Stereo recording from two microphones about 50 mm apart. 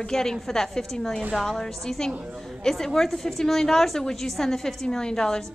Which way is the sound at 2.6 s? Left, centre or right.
Centre.